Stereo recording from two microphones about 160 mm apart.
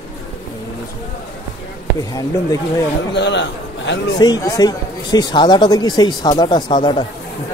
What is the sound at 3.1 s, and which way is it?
Speech, 90° left.